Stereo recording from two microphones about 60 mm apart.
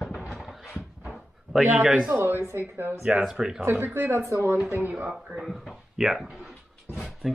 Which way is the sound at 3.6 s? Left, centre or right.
Right.